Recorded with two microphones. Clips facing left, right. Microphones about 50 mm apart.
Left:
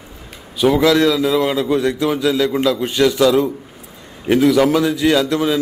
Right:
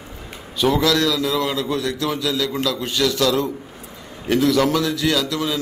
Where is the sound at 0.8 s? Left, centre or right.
Left.